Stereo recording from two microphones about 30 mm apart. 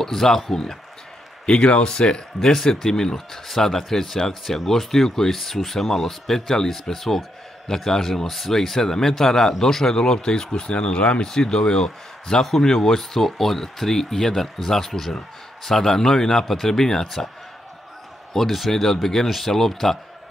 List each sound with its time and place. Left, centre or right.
0.0 s speech: centre
1.4 s speech: left
2.5 s speech: centre; by 11.2 s left
11.2 s speech: left
18.3 s a man's voice: centre
19.2 s speech: centre